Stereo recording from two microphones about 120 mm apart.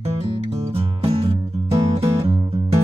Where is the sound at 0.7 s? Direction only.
50° right (ahead or behind).